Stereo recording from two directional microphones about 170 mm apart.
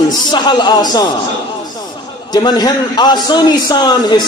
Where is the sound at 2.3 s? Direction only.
25° left (ahead or behind).